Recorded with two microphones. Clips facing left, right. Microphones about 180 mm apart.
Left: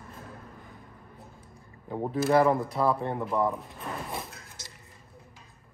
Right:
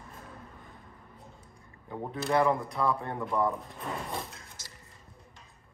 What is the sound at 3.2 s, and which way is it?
Speech, 5° left (ahead or behind).